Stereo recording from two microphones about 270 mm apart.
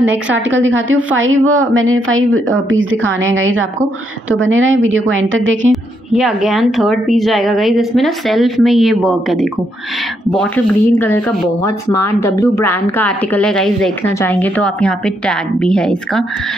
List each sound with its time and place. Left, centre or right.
0.5 s a woman's voice: right
5.7 s a woman's voice: centre